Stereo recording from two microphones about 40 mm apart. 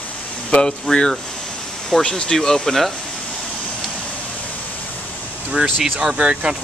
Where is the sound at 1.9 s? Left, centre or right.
Centre.